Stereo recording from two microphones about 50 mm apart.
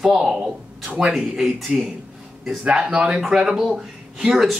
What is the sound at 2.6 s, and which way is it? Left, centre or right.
Speech, centre.